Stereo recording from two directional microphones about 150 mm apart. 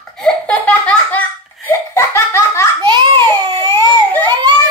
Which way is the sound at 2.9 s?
30° right (ahead or behind).